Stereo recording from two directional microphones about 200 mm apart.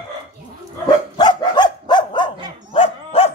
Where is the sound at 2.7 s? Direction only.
30° left (ahead or behind).